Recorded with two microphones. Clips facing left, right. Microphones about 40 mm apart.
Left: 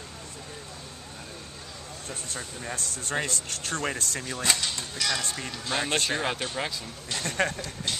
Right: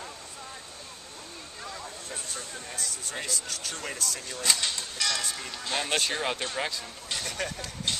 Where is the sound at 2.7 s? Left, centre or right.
Left.